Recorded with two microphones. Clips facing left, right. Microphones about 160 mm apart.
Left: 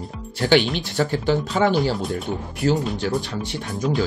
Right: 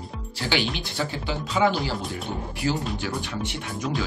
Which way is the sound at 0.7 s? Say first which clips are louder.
Left 7 dB; 50° left (ahead or behind).